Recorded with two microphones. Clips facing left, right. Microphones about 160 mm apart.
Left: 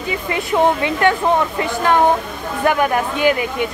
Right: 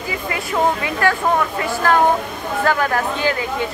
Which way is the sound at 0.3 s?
20° left (ahead or behind).